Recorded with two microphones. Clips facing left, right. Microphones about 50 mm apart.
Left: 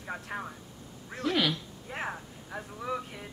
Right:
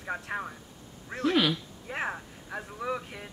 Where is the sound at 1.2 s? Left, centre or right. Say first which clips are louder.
Right 3 dB; centre.